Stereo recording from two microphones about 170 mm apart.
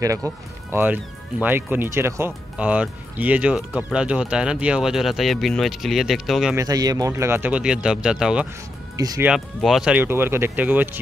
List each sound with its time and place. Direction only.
0.0 s speech: 20° right (ahead or behind); by 6.5 s centre (ahead or behind)
6.5 s speech: 20° right (ahead or behind); by 8.5 s 5° right (ahead or behind)
8.9 s speech: 20° right (ahead or behind)
9.2 s speech: 5° right (ahead or behind)